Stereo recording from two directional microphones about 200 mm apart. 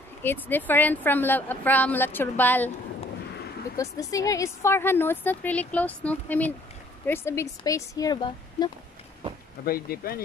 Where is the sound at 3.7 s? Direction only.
15° left (ahead or behind).